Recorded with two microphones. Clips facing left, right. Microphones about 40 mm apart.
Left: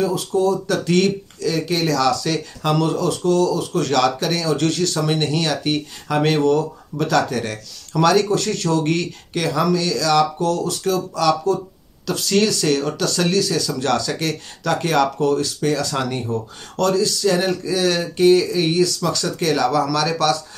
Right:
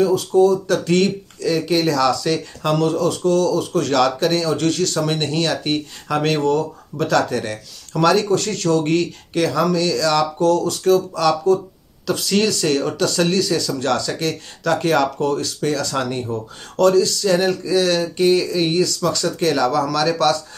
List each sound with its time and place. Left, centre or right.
0.4 s speech: centre
0.9 s speech: centre
1.5 s speech: centre
3.9 s speech: centre
6.0 s speech: centre
7.2 s speech: centre
9.4 s speech: centre
15.7 s speech: centre
16.3 s speech: centre
18.2 s speech: centre
18.9 s speech: centre
19.4 s speech: centre